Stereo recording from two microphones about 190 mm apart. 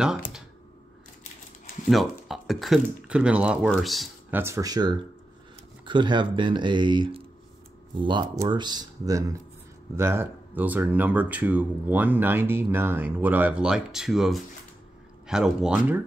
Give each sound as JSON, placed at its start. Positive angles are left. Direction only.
{"t": 1.9, "sound": "speech", "side_deg": 0}
{"t": 4.4, "sound": "speech", "side_deg": -15}